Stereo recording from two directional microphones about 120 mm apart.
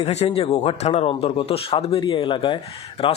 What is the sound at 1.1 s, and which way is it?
Speech, 50° left (ahead or behind).